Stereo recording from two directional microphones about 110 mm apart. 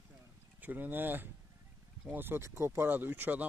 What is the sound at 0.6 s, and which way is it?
Speech, 15° right (ahead or behind).